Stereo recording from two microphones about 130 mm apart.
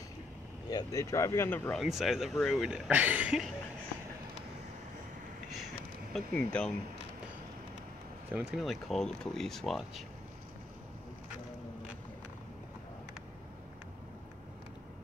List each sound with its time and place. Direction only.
0.7 s speech: 25° left (ahead or behind)
1.8 s speech: centre (ahead or behind)
6.1 s speech: 10° left (ahead or behind)
8.3 s speech: 15° right (ahead or behind)
8.5 s speech: centre (ahead or behind)